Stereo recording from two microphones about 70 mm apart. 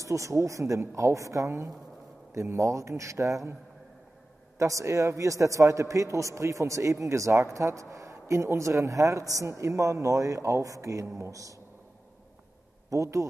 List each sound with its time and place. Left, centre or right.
0.0 s a man's voice: right
4.6 s a man's voice: right
12.9 s a man's voice: right